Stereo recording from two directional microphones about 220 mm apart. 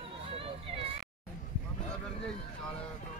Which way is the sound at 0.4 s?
25° right (ahead or behind).